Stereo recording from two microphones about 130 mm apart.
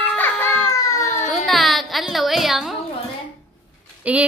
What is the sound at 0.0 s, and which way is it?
Baby cry, 15° left (ahead or behind).